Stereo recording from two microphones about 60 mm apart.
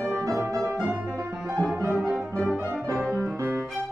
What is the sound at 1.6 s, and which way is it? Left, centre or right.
Music, centre.